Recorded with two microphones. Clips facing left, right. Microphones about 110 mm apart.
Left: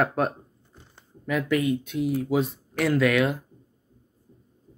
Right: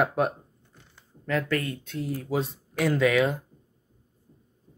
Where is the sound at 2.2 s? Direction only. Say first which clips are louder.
Left 4 dB; 5° left (ahead or behind).